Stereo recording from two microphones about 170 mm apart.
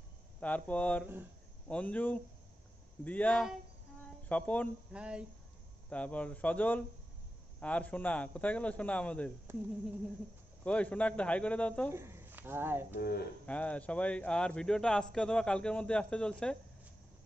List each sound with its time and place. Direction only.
0.4 s a man's voice: 10° left (ahead or behind)
4.9 s speech: 5° right (ahead or behind)
5.9 s a man's voice: 10° left (ahead or behind)
10.6 s a man's voice: 10° left (ahead or behind)
11.9 s speech: 15° right (ahead or behind)
12.9 s speech: 65° left (ahead or behind)
13.5 s a man's voice: 10° left (ahead or behind)